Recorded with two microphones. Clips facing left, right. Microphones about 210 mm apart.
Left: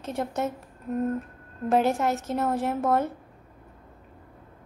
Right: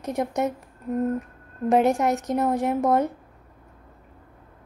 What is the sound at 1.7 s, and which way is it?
A woman's voice, 15° right (ahead or behind).